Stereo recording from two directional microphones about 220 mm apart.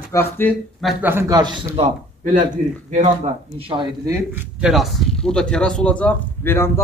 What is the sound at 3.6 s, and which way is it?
Speech, 25° right (ahead or behind).